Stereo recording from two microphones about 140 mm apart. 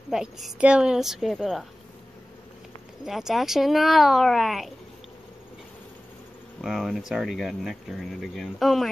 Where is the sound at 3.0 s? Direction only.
Centre (ahead or behind).